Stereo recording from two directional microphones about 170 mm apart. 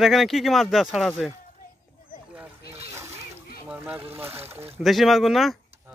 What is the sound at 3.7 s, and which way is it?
Vehicle, 10° right (ahead or behind).